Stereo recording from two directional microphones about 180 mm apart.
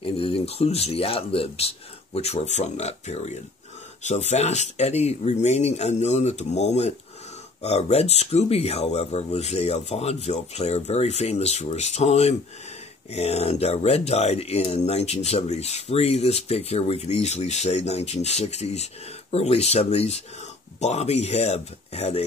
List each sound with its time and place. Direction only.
0.0 s speech: 30° left (ahead or behind)